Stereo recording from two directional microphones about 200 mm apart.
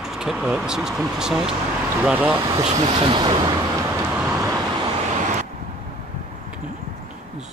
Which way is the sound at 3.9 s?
10° right (ahead or behind).